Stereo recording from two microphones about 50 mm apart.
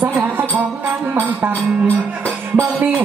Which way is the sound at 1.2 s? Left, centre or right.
Right.